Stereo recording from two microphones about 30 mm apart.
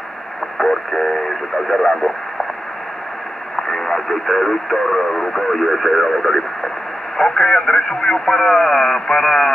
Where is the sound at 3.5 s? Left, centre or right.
Centre.